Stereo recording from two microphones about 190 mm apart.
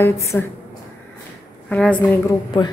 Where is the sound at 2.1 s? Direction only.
20° left (ahead or behind).